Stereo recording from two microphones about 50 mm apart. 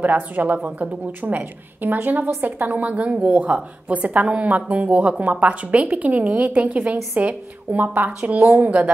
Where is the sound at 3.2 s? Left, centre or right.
Right.